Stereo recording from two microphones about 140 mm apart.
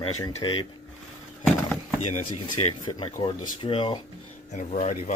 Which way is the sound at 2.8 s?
40° left (ahead or behind).